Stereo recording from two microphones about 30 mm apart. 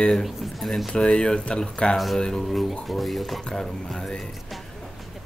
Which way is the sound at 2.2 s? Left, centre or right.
Centre.